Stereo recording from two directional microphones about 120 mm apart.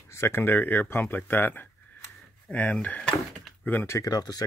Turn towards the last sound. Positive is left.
turn(degrees=30)  # may be behind; listen again after turning